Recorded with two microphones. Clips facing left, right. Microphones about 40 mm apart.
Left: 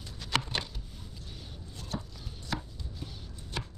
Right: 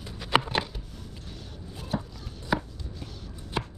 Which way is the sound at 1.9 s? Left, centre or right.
Right.